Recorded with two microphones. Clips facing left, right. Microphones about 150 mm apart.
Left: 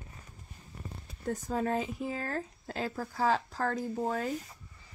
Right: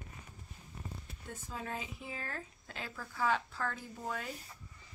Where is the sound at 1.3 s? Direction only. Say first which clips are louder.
Left 12 dB; 40° left (ahead or behind).